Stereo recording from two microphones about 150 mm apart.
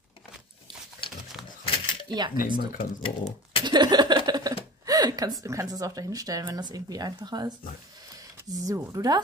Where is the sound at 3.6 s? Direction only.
30° right (ahead or behind).